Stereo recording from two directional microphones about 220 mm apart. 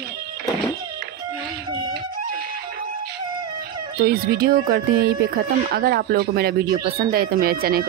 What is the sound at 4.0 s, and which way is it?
Speech, 45° right (ahead or behind).